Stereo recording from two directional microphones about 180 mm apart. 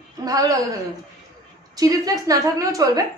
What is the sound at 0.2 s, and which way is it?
Speech, 20° right (ahead or behind).